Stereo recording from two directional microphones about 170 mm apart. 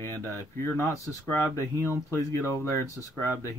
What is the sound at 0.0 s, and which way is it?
Speech, 15° left (ahead or behind).